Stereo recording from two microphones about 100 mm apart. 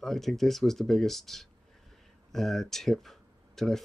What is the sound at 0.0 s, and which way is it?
Speech, centre (ahead or behind).